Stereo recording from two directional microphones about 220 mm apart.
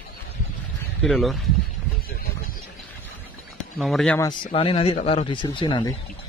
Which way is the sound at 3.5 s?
Centre (ahead or behind).